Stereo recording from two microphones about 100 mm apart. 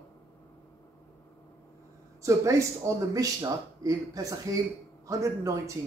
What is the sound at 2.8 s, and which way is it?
Speech, 30° right (ahead or behind).